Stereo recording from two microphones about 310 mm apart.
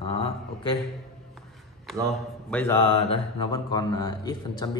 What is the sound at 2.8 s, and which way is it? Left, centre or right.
A man's voice, centre.